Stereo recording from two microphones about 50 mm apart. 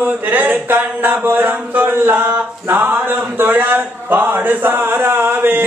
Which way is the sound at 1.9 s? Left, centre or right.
Right.